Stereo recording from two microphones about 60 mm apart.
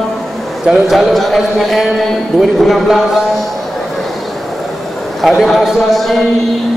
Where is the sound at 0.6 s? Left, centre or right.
Centre.